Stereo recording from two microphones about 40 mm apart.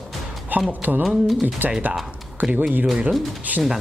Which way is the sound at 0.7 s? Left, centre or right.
Right.